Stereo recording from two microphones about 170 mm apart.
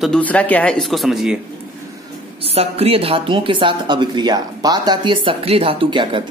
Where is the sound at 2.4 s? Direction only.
35° right (ahead or behind).